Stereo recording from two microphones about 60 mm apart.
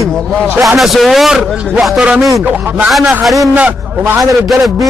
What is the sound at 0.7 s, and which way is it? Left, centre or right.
A man's voice, centre.